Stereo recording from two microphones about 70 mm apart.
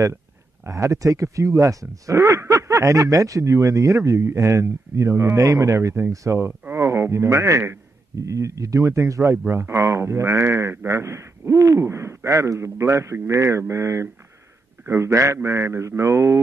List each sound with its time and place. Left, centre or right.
0.7 s a man's voice: right
12.3 s speech: right
15.3 s a man's voice: right